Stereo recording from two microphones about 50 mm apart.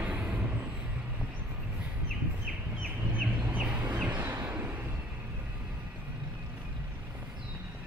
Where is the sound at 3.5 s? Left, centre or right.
Right.